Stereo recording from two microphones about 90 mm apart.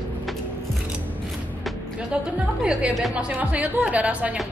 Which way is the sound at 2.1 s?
10° right (ahead or behind).